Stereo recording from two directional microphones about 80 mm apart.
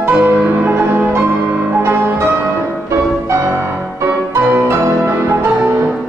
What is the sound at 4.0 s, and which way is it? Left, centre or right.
Music, right.